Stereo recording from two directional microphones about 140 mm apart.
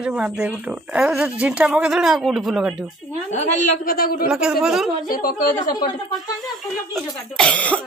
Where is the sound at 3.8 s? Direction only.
90° left.